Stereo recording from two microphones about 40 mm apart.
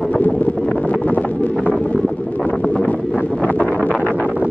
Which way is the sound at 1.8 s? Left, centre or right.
Left.